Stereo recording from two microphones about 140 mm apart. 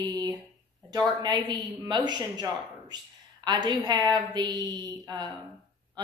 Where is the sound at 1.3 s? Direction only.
30° right (ahead or behind).